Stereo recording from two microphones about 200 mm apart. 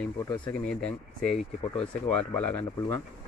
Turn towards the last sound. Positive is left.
turn(degrees=10)  # may be behind; listen again after turning